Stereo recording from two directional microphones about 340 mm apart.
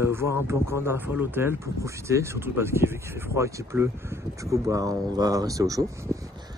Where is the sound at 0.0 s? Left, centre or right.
Centre.